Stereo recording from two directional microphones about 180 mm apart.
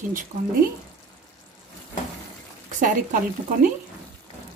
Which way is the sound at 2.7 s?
45° right (ahead or behind).